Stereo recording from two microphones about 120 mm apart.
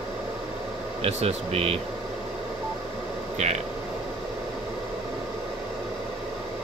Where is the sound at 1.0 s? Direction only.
60° right (ahead or behind).